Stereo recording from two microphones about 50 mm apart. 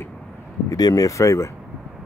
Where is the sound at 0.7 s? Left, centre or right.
Left.